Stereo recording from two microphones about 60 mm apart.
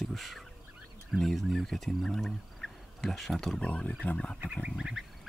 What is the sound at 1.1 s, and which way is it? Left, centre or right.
Speech, centre.